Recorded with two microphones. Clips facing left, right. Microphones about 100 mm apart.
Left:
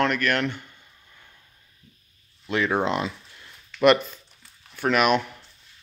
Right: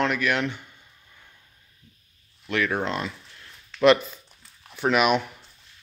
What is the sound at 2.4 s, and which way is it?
Speech, 25° left (ahead or behind).